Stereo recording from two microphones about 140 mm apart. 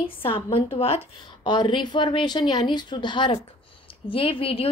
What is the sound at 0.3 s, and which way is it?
A woman's voice, 40° left (ahead or behind).